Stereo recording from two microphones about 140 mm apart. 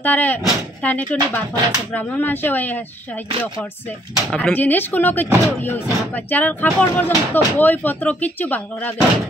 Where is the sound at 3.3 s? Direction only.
35° right (ahead or behind).